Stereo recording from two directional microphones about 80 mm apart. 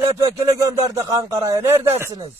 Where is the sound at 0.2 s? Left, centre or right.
Right.